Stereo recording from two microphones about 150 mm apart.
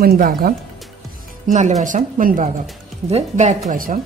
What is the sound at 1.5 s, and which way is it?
Speech, 55° right (ahead or behind).